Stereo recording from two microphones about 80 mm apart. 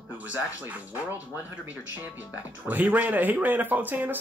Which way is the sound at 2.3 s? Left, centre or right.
Right.